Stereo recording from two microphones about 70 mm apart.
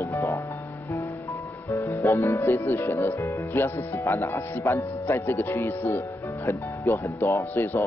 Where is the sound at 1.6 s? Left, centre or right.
Left.